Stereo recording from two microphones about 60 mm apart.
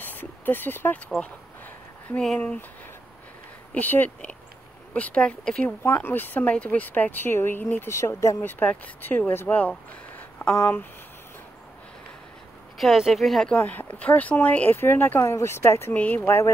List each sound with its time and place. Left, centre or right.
0.0 s speech: left
2.3 s speech: centre
3.7 s speech: left; by 5.8 s centre
6.0 s speech: left
7.9 s speech: left
8.4 s speech: left
9.5 s a sound: left
12.7 s speech: centre
13.6 s speech: left
15.1 s speech: left
15.9 s speech: left